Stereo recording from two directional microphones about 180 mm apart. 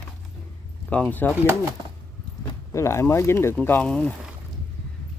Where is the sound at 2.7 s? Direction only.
15° left (ahead or behind).